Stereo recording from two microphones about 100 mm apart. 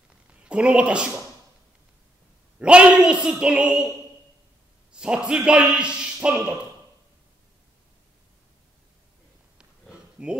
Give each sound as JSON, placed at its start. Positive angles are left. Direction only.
{"t": 0.3, "sound": "a woman's voice", "side_deg": -10}
{"t": 2.6, "sound": "speech", "side_deg": -10}
{"t": 4.9, "sound": "speech", "side_deg": -10}
{"t": 9.6, "sound": "a sound", "side_deg": -10}